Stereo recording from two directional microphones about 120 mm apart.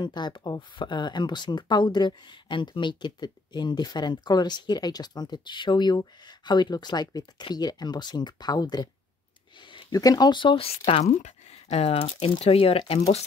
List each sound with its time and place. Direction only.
0.0 s speech: 40° left (ahead or behind)